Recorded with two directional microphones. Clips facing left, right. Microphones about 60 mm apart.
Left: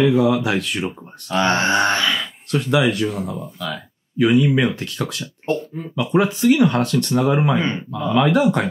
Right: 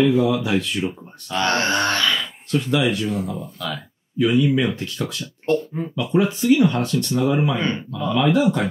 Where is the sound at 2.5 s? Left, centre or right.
Left.